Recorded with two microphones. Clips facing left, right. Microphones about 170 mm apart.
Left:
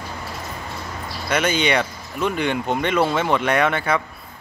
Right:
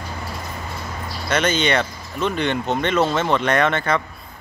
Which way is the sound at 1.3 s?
10° left (ahead or behind).